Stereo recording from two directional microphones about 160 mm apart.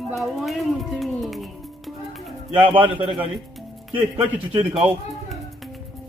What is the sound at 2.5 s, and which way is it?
Speech, 35° right (ahead or behind).